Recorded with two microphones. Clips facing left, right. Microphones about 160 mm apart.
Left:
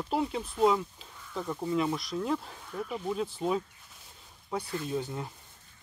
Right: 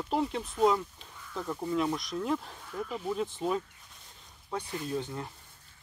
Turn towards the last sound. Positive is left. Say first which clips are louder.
# left 1 dB
turn(degrees=5)  # may be behind; listen again after turning